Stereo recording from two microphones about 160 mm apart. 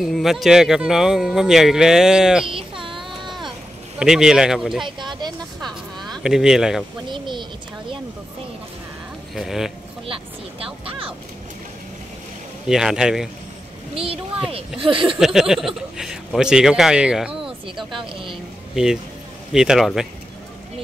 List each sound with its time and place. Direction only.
0.0 s speech: centre (ahead or behind)
2.4 s a sound: 35° right (ahead or behind)
4.0 s speech: 5° right (ahead or behind)
4.8 s speech: 30° right (ahead or behind)
5.6 s a sound: centre (ahead or behind)
7.1 s speech: 30° right (ahead or behind)
9.3 s speech: centre (ahead or behind)
10.6 s speech: 35° right (ahead or behind)
12.6 s speech: 5° right (ahead or behind)
13.9 s speech: 35° right (ahead or behind)
15.1 s speech: 5° right (ahead or behind)
17.9 s speech: 30° right (ahead or behind)
19.5 s speech: 5° right (ahead or behind)